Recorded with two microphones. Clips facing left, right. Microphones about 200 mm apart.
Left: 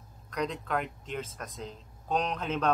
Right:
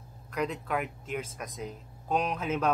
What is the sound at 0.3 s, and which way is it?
Speech, 5° right (ahead or behind).